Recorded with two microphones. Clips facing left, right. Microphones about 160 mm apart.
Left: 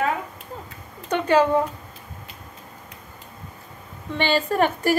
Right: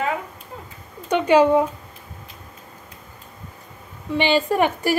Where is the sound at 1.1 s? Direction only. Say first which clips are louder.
Right 3 dB; 15° right (ahead or behind).